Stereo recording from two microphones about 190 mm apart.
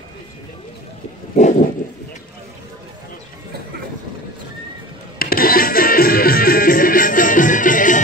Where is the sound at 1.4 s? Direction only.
40° left (ahead or behind).